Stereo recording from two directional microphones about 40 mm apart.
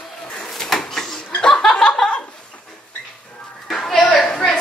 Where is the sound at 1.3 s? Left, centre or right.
Left.